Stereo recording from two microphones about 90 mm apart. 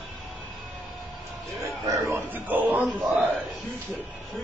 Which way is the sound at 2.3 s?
20° right (ahead or behind).